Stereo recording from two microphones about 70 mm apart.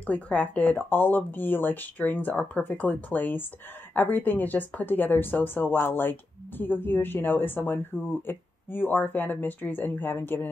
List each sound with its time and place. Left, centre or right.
0.0 s speech: centre
0.7 s speech: left